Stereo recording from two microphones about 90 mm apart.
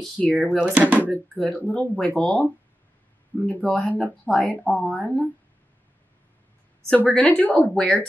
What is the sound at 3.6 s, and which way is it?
Speech, 5° left (ahead or behind).